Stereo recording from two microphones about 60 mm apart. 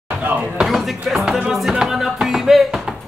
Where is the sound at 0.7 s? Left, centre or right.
Centre.